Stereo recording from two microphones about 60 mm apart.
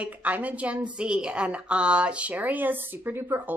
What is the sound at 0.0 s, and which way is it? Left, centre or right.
A woman's voice, right.